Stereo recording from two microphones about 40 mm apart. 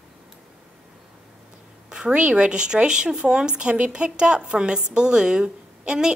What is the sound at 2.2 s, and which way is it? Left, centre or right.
Speech, right.